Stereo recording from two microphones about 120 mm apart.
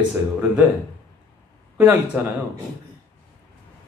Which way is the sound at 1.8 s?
15° right (ahead or behind).